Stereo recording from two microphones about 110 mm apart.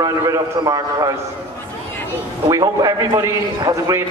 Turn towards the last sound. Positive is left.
turn(degrees=-30)  # may be behind; listen again after turning